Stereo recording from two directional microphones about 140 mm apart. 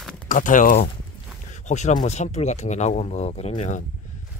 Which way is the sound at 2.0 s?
55° left (ahead or behind).